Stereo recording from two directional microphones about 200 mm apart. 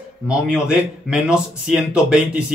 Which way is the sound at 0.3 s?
5° right (ahead or behind).